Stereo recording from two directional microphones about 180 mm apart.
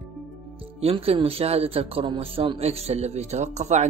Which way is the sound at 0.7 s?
30° right (ahead or behind).